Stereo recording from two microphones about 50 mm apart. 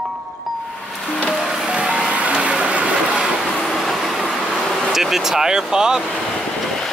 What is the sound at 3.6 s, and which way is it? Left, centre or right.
Train, centre.